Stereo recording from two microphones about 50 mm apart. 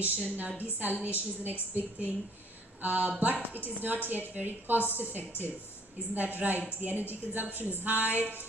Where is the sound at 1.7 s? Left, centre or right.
Right.